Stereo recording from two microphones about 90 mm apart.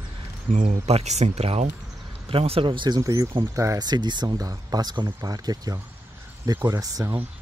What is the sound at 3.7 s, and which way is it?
Speech, 55° right (ahead or behind).